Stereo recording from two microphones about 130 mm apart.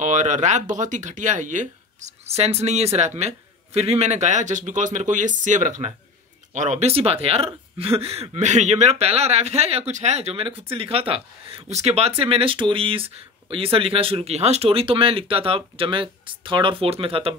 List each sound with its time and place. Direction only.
0.0 s speech: 70° right (ahead or behind); by 17.4 s 45° right (ahead or behind)